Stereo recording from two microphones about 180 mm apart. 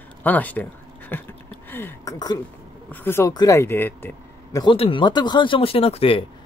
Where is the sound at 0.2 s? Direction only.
10° left (ahead or behind).